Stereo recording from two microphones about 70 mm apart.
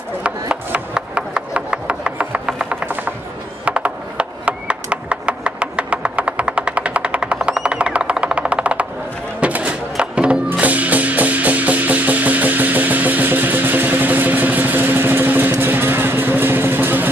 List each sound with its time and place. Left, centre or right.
0.2 s wood: centre
3.6 s a sound: centre
9.4 s music: centre
15.6 s vehicle: right